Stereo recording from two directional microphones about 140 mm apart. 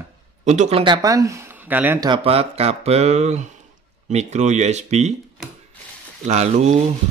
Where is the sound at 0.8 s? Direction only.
25° right (ahead or behind).